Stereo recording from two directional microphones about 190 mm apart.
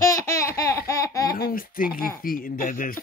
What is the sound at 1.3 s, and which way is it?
Speech, 50° left (ahead or behind).